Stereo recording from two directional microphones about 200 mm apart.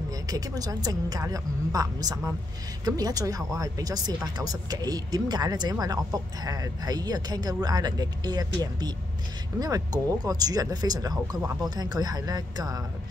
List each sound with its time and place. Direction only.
0.3 s a woman's voice: 20° right (ahead or behind)